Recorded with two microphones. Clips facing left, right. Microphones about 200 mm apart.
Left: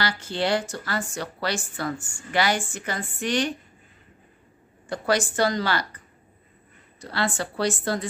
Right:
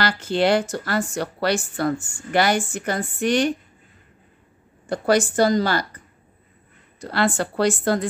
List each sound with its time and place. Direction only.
0.3 s speech: 70° right (ahead or behind)
0.7 s a woman's voice: 45° right (ahead or behind)
4.8 s a woman's voice: 45° right (ahead or behind)
7.0 s a woman's voice: 50° right (ahead or behind)